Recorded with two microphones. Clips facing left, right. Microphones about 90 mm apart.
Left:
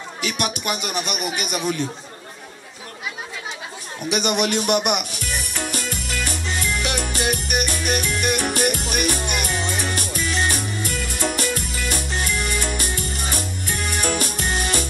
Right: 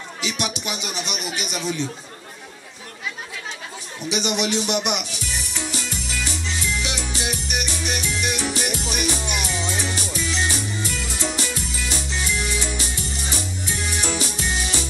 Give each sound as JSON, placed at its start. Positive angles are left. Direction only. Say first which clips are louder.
{"t": 0.2, "sound": "speech", "louder": "left 2 dB", "side_deg": 50}
{"t": 4.1, "sound": "music", "louder": "left 2 dB", "side_deg": 50}